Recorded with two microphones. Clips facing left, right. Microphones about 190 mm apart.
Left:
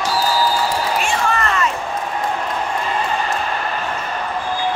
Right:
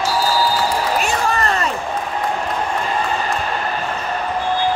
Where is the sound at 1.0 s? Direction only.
35° right (ahead or behind).